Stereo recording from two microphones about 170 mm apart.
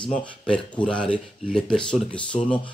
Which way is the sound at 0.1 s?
5° left (ahead or behind).